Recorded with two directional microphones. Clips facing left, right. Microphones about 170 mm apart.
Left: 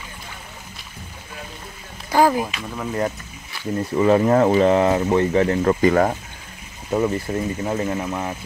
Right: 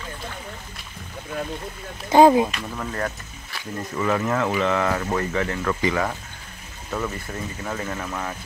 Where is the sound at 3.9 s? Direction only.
30° left (ahead or behind).